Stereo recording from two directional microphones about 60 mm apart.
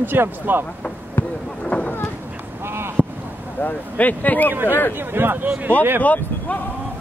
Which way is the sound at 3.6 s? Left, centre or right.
Left.